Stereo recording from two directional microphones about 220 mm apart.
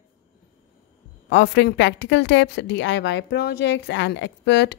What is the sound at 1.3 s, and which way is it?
A woman's voice, 50° left (ahead or behind).